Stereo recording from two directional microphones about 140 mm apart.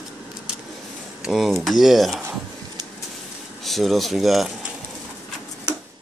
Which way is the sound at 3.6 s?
Centre (ahead or behind).